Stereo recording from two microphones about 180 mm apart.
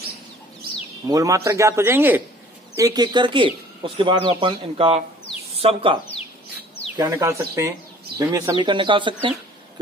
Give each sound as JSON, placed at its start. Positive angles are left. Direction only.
{"t": 1.0, "sound": "a man's voice", "side_deg": -20}
{"t": 7.0, "sound": "a man's voice", "side_deg": -15}